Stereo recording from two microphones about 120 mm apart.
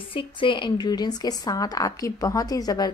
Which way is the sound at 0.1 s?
45° left (ahead or behind).